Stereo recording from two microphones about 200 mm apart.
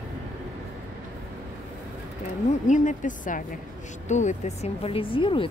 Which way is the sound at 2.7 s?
40° left (ahead or behind).